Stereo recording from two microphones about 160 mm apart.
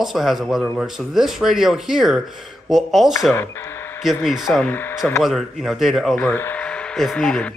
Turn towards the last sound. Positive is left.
turn(degrees=5)  # may be behind; listen again after turning